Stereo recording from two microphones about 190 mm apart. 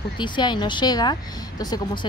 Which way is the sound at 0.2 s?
25° left (ahead or behind).